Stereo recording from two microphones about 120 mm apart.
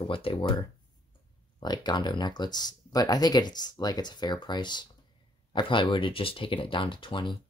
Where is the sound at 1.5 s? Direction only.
35° left (ahead or behind).